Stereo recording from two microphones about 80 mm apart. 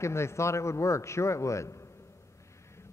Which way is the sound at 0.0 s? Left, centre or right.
Left.